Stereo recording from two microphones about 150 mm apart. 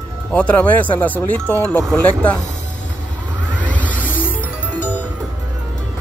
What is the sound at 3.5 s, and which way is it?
Music, 10° left (ahead or behind).